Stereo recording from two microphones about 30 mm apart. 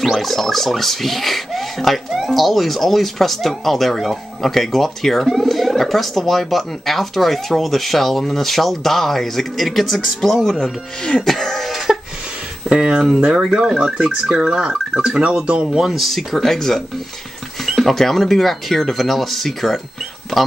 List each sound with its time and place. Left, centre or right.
0.0 s speech: centre
10.4 s speech: centre
11.2 s cough: centre
12.6 s speech: right
13.7 s speech: centre
15.0 s speech: right
15.4 s speech: right
15.8 s speech: centre
16.1 s speech: centre
16.4 s speech: centre
17.6 s a sound: centre
17.9 s speech: centre